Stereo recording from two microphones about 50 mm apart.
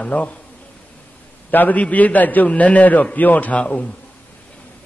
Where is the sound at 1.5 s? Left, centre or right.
Left.